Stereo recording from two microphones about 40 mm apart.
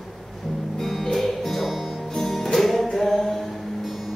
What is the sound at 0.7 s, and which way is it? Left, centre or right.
Music, centre.